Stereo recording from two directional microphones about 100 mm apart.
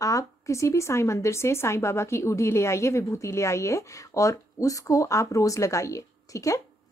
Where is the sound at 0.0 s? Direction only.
35° left (ahead or behind).